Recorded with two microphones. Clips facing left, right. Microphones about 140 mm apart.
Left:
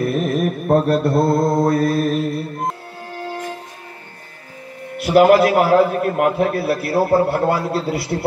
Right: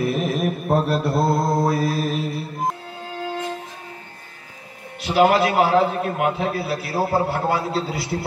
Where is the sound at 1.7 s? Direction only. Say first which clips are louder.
Left 5 dB; centre (ahead or behind).